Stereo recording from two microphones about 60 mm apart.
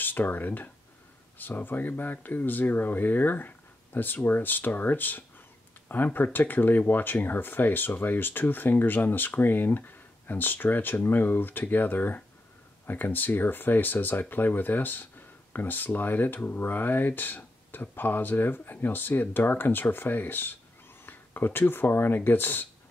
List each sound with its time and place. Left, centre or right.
0.0 s speech: left